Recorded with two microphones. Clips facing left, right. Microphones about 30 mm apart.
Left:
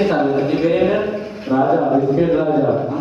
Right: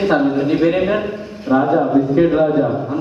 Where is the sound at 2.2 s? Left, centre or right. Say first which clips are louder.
Right 1 dB; centre.